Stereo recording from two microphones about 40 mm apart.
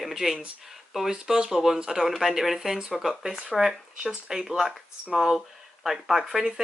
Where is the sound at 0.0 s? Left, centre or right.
Centre.